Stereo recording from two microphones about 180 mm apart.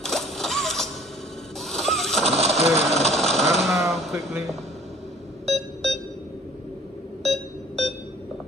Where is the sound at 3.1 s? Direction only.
Centre (ahead or behind).